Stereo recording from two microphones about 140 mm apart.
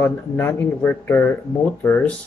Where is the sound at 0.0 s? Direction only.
15° left (ahead or behind).